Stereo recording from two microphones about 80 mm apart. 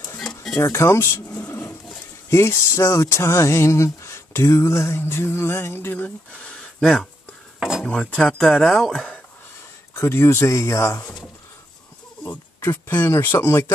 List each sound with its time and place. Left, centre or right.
0.2 s a sound: centre
0.6 s speech: left
1.4 s a sound: left
2.2 s speech: left; by 8.4 s centre
8.4 s speech: centre
9.9 s speech: left
12.6 s speech: left